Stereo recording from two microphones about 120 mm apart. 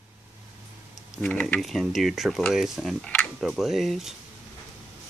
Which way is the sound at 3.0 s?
10° left (ahead or behind).